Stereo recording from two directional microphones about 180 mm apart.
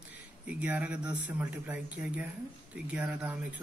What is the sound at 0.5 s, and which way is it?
Speech, 10° right (ahead or behind).